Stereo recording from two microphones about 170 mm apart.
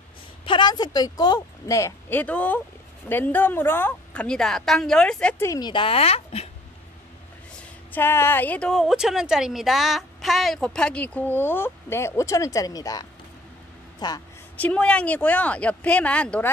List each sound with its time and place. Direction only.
0.5 s a woman's voice: 25° left (ahead or behind); by 5.5 s 5° left (ahead or behind)
5.5 s speech: 25° left (ahead or behind)
7.9 s a woman's voice: 15° left (ahead or behind)
14.6 s a woman's voice: 5° left (ahead or behind)